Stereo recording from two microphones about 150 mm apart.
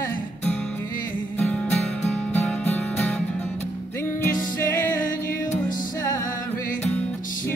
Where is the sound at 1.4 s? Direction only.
5° left (ahead or behind).